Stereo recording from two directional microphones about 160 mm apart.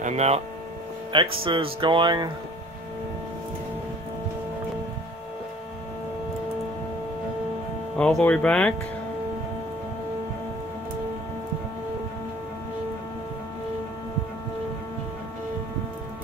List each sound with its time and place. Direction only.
0.0 s speech: 45° right (ahead or behind); by 2.3 s 30° right (ahead or behind)
8.0 s speech: 5° left (ahead or behind)